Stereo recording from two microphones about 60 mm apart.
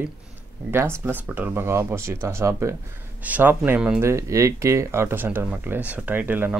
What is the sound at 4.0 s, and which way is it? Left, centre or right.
Speech, right.